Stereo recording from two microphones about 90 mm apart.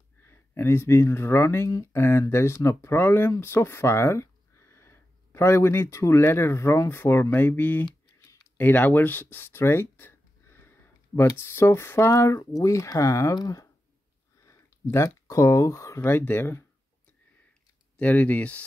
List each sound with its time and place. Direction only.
0.2 s speech: 30° left (ahead or behind)
8.5 s a sound: 20° left (ahead or behind)
11.3 s speech: 30° left (ahead or behind); by 13.7 s 45° left (ahead or behind)
14.4 s speech: 30° left (ahead or behind)
17.9 s speech: 15° left (ahead or behind)